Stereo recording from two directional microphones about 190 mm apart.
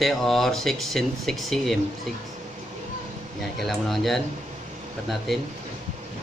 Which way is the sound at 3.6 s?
Centre (ahead or behind).